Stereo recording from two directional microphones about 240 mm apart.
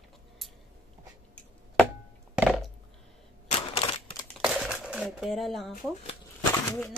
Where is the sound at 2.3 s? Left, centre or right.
Centre.